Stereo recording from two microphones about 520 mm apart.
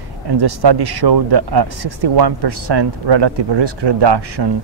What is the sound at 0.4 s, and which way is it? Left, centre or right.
Speech, right.